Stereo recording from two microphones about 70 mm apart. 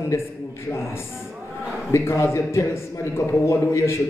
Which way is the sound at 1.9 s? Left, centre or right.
Left.